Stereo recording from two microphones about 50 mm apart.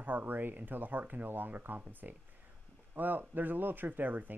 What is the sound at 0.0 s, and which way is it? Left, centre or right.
Speech, right.